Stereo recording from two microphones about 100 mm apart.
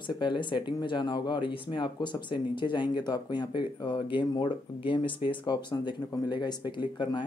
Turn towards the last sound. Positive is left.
turn(degrees=50)  # may be behind; listen again after turning